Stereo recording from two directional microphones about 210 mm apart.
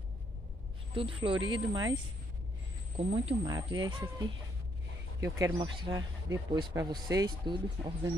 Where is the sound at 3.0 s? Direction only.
30° right (ahead or behind).